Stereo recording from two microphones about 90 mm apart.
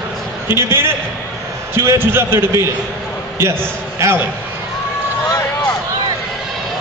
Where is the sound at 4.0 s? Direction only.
30° right (ahead or behind).